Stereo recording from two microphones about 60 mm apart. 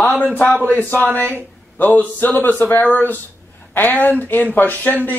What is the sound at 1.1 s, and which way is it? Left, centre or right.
Speech, right.